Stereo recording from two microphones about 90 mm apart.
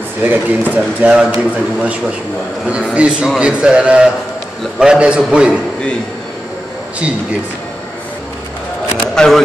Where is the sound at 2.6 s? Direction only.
15° right (ahead or behind).